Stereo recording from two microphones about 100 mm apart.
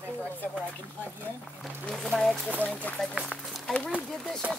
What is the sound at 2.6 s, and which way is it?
Speech, 15° left (ahead or behind).